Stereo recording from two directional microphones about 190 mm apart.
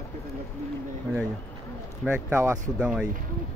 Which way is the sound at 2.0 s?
10° right (ahead or behind).